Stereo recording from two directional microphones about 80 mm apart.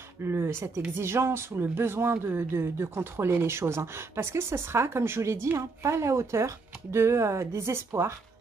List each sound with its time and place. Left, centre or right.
0.2 s speech: right